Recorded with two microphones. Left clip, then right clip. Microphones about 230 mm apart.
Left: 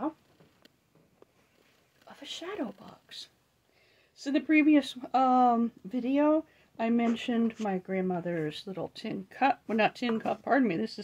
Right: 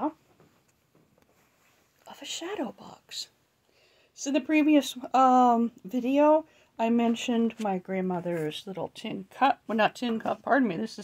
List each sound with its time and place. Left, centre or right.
2.0 s speech: right; by 11.0 s centre